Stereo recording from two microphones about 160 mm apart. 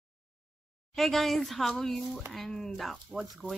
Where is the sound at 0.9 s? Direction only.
Centre (ahead or behind).